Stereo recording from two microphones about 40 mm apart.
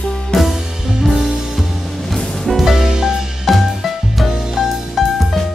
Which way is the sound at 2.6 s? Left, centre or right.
Centre.